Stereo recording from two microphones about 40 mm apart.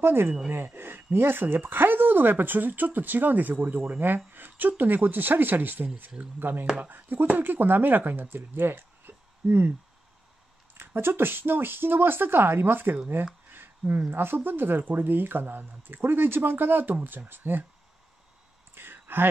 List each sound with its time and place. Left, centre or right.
0.0 s speech: right
6.8 s speech: right
10.7 s speech: right
13.5 s a sound: right
14.1 s speech: right
18.8 s a sound: right